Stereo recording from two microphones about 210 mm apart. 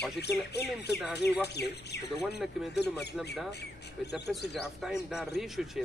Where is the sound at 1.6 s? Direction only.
50° left (ahead or behind).